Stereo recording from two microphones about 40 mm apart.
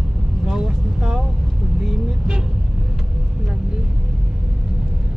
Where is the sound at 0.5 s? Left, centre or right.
Centre.